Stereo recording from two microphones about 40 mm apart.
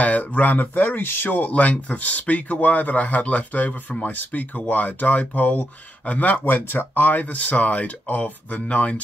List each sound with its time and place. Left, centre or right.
0.0 s speech: left
1.3 s speech: left